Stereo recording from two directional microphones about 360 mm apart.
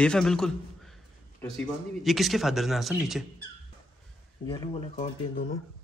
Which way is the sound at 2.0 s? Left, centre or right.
Centre.